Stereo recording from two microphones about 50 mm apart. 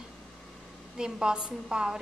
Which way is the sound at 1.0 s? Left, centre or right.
Centre.